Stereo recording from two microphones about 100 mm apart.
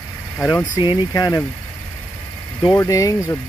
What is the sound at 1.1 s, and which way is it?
Speech, 35° left (ahead or behind).